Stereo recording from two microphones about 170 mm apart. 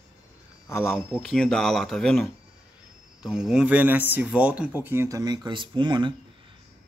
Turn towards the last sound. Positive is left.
turn(degrees=-25)  # may be behind; listen again after turning